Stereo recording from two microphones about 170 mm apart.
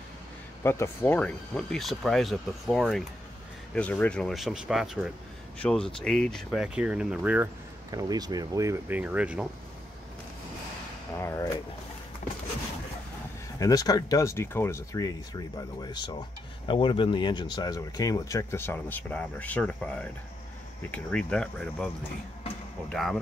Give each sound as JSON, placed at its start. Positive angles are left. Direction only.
{"t": 0.7, "sound": "speech", "side_deg": 10}
{"t": 7.9, "sound": "speech", "side_deg": -20}
{"t": 11.1, "sound": "a sound", "side_deg": 15}
{"t": 13.6, "sound": "speech", "side_deg": 20}